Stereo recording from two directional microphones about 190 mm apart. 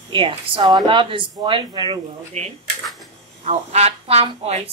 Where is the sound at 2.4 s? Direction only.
35° right (ahead or behind).